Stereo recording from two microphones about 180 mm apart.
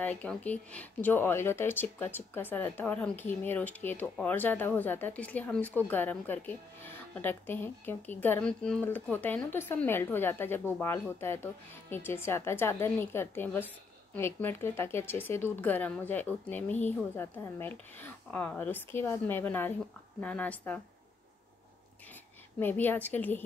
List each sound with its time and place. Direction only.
0.0 s speech: 5° left (ahead or behind)
22.6 s speech: 10° left (ahead or behind)